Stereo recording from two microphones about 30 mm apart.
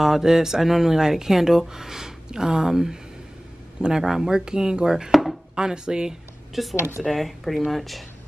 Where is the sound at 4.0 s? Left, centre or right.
Centre.